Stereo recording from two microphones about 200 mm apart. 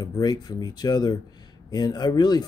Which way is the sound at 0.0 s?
20° left (ahead or behind).